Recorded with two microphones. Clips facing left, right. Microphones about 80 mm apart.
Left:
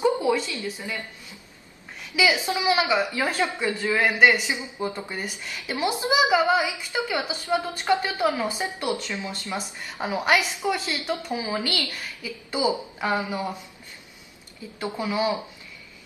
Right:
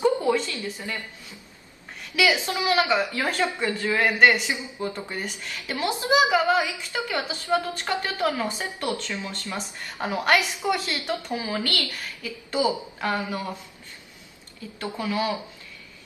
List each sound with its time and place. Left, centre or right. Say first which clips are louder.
0.0 s a sound: even; centre
2.1 s a woman's voice: even; centre
14.8 s speech: left 1 dB; centre